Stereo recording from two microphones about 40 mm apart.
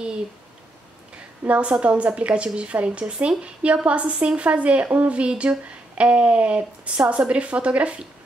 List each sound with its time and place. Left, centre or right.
1.5 s a woman's voice: right